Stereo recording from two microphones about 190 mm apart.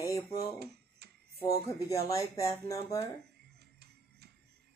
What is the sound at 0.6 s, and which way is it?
Tick-tock, 55° right (ahead or behind).